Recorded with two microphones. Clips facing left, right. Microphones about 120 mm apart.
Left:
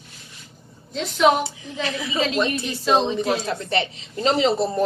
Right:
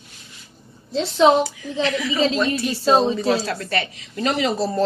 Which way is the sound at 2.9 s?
35° right (ahead or behind).